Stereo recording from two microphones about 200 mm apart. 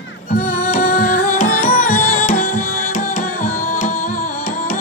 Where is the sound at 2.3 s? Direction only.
40° left (ahead or behind).